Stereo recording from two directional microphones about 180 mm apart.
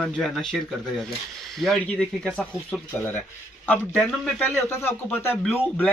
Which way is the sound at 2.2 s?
Centre (ahead or behind).